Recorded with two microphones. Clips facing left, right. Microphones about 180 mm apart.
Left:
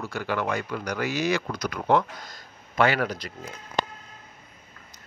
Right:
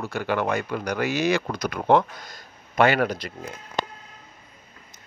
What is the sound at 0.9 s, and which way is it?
Speech, 65° right (ahead or behind).